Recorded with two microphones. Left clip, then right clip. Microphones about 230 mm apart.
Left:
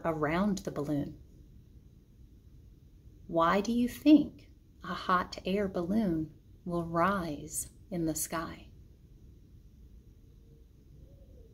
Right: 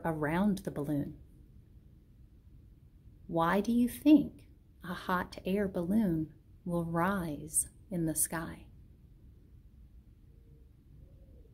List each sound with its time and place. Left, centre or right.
0.0 s a woman's voice: right
3.3 s a woman's voice: right